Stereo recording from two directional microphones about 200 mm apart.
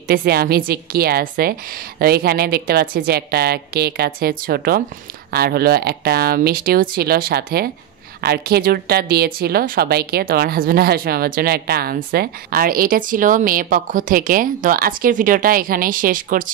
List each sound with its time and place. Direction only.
0.1 s a woman's voice: 50° right (ahead or behind)